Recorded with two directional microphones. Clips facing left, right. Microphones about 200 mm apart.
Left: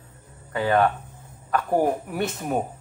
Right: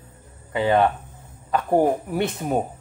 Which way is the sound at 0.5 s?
20° right (ahead or behind).